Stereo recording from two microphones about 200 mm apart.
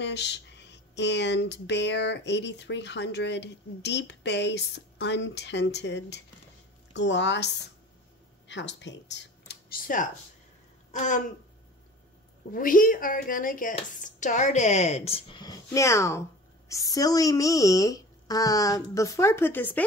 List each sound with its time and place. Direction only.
0.0 s speech: 60° left (ahead or behind); by 11.2 s 40° left (ahead or behind)
12.4 s speech: 45° left (ahead or behind); by 19.8 s 10° left (ahead or behind)